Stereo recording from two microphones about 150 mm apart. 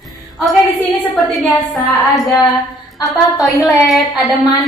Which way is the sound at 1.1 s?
Centre (ahead or behind).